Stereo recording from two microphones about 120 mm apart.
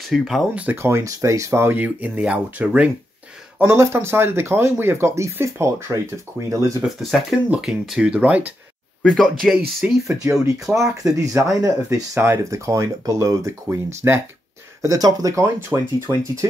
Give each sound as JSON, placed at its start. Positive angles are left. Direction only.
{"t": 0.1, "sound": "speech", "side_deg": 0}
{"t": 0.7, "sound": "speech", "side_deg": -20}
{"t": 3.5, "sound": "speech", "side_deg": -20}
{"t": 6.8, "sound": "speech", "side_deg": 0}
{"t": 9.0, "sound": "speech", "side_deg": 5}
{"t": 10.4, "sound": "speech", "side_deg": -25}